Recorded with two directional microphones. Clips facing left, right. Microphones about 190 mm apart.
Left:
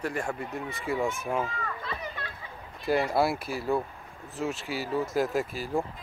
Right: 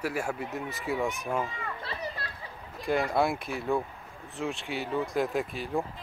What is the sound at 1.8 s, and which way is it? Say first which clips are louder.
Speech: even; 35° right (ahead or behind).